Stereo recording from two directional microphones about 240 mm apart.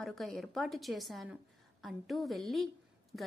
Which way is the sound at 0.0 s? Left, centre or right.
Centre.